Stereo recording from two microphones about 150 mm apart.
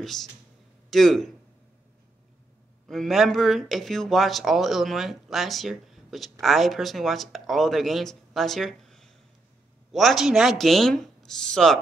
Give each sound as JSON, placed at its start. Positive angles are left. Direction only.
{"t": 0.0, "sound": "a man's voice", "side_deg": 0}
{"t": 2.9, "sound": "speech", "side_deg": 0}